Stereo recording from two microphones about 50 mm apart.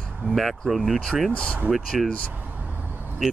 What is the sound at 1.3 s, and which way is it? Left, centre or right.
Speech, centre.